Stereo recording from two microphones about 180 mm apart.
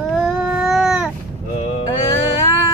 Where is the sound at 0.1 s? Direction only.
5° right (ahead or behind).